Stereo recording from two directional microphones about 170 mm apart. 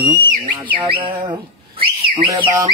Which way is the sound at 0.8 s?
30° right (ahead or behind).